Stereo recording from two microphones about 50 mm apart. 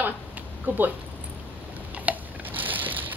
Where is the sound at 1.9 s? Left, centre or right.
Right.